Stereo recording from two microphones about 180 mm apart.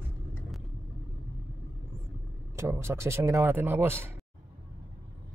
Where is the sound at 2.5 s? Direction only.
15° right (ahead or behind).